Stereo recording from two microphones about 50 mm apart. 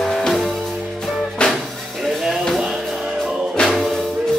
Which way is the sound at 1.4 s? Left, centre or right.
Left.